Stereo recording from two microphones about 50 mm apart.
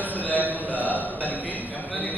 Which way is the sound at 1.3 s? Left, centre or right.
Left.